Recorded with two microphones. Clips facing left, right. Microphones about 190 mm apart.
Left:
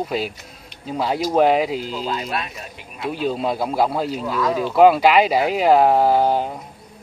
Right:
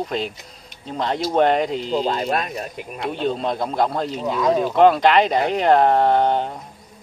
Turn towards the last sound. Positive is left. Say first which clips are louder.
# left 1 dB
turn(degrees=5)  # may be behind; listen again after turning